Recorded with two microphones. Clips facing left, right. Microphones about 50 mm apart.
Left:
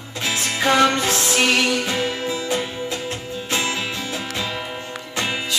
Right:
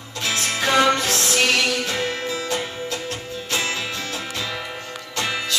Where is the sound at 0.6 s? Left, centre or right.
Centre.